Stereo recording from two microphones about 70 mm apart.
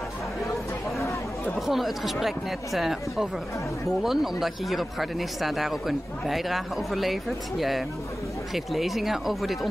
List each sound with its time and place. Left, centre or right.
1.7 s speech: centre